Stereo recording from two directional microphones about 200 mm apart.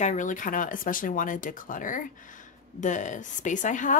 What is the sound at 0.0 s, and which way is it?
Speech, 40° left (ahead or behind).